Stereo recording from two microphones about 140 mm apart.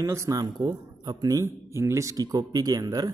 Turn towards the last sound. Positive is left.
turn(degrees=-30)  # may be behind; listen again after turning